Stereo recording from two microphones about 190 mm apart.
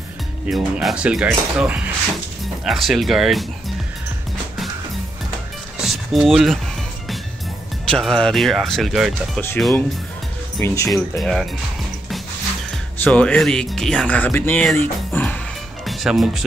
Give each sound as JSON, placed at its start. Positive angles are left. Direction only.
{"t": 0.5, "sound": "speech", "side_deg": 0}
{"t": 5.8, "sound": "a sound", "side_deg": 0}
{"t": 7.9, "sound": "speech", "side_deg": 5}
{"t": 10.6, "sound": "speech", "side_deg": 15}
{"t": 10.9, "sound": "speech", "side_deg": 0}
{"t": 13.0, "sound": "speech", "side_deg": 5}